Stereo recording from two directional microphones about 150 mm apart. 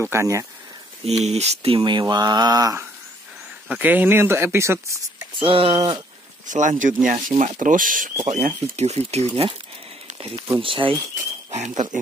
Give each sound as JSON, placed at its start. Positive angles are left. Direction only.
{"t": 0.0, "sound": "speech", "side_deg": -20}
{"t": 1.0, "sound": "speech", "side_deg": -45}
{"t": 5.4, "sound": "speech", "side_deg": -40}
{"t": 5.8, "sound": "speech", "side_deg": -25}
{"t": 6.4, "sound": "speech", "side_deg": -55}
{"t": 8.3, "sound": "speech", "side_deg": -50}
{"t": 10.6, "sound": "speech", "side_deg": -35}
{"t": 11.5, "sound": "speech", "side_deg": -50}